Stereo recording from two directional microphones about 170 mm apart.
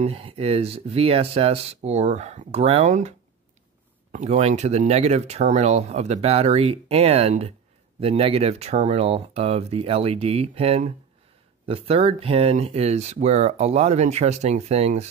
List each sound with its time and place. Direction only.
0.0 s speech: 35° right (ahead or behind)